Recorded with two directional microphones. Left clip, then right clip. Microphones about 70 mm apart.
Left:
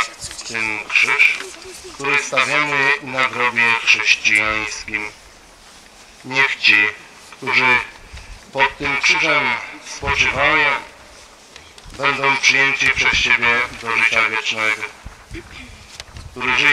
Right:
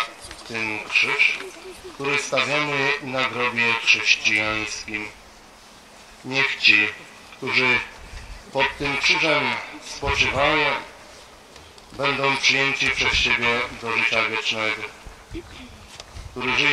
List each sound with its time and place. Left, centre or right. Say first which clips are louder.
0.4 s speech: left 5 dB; left
6.2 s speech: left 3 dB; left
12.0 s speech: left 5 dB; left
15.3 s duck: left 3 dB; left